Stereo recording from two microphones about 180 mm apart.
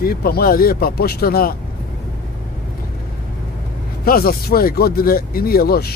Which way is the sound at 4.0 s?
55° left (ahead or behind).